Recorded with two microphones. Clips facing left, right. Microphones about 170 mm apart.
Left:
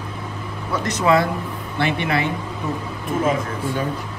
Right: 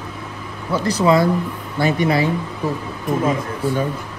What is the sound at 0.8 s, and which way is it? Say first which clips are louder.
Speech: right 3 dB; 35° right (ahead or behind).